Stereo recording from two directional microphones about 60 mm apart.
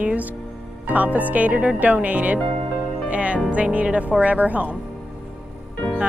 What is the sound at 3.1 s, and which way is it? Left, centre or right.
Music, right.